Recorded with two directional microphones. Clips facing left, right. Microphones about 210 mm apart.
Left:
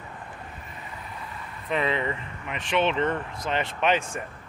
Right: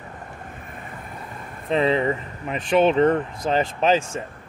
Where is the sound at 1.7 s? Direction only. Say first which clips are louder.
Right 6 dB; 30° right (ahead or behind).